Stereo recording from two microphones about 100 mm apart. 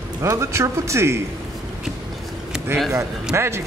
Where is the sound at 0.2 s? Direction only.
30° right (ahead or behind).